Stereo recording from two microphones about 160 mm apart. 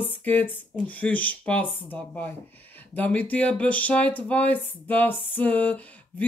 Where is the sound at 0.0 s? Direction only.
10° left (ahead or behind).